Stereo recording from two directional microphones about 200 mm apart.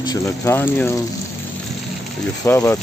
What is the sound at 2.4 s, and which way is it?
Speech, 15° left (ahead or behind).